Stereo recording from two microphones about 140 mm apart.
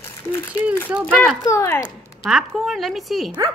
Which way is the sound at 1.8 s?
Centre (ahead or behind).